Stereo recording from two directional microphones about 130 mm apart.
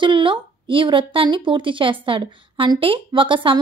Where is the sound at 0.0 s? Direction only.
40° right (ahead or behind).